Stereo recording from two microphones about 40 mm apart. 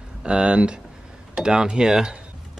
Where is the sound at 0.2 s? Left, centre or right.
Right.